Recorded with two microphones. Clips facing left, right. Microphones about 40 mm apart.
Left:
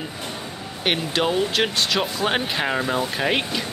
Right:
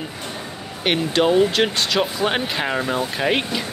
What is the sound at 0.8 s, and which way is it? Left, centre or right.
Speech, centre.